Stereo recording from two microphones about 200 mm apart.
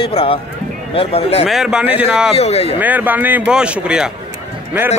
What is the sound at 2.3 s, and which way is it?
Speech, 30° left (ahead or behind).